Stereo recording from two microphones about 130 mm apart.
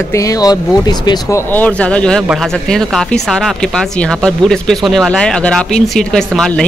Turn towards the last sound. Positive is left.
turn(degrees=5)  # may be behind; listen again after turning